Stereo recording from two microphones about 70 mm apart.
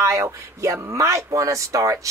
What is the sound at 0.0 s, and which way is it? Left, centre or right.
Speech, right.